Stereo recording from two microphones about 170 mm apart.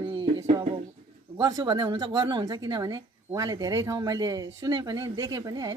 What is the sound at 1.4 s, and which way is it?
Speech, 25° right (ahead or behind).